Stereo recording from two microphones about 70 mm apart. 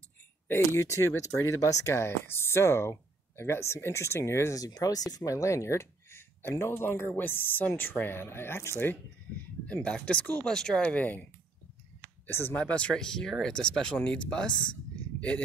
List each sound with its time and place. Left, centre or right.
0.5 s speech: left
2.0 s speech: left
4.6 s speech: left
5.1 s speech: left
9.7 s speech: centre
10.4 s speech: centre
12.3 s speech: left
12.5 s speech: centre